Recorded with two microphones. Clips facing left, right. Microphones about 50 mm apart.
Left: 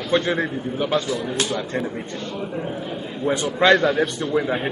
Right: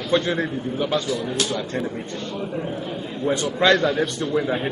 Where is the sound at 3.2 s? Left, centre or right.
Centre.